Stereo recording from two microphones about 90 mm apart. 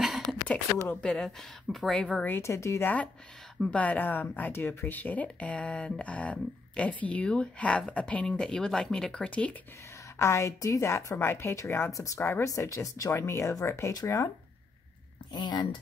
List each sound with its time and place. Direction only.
0.0 s a sound: centre (ahead or behind)
0.8 s speech: 10° left (ahead or behind)
2.2 s a woman's voice: 25° left (ahead or behind)
3.7 s speech: 15° left (ahead or behind)
10.1 s a woman's voice: 30° left (ahead or behind)
15.3 s speech: 50° left (ahead or behind)